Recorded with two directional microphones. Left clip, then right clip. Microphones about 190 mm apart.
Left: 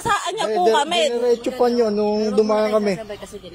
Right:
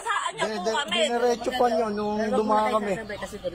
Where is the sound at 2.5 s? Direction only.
35° left (ahead or behind).